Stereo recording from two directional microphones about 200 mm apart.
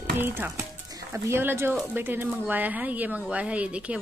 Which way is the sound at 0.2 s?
10° right (ahead or behind).